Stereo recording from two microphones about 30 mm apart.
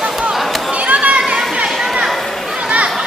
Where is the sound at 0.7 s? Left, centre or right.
Right.